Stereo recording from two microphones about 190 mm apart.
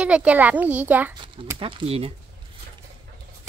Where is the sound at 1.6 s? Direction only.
30° right (ahead or behind).